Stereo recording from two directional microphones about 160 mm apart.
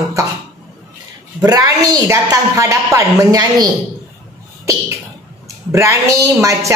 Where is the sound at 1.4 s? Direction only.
25° right (ahead or behind).